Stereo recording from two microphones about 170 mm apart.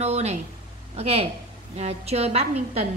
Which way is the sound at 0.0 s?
40° right (ahead or behind).